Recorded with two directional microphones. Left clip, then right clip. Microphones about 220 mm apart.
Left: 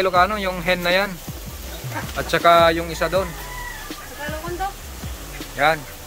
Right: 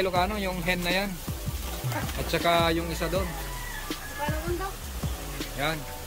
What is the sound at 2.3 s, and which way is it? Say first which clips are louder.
Speech: left 10 dB; 5° right (ahead or behind).